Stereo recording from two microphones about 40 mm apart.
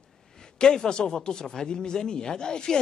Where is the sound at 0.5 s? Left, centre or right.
Centre.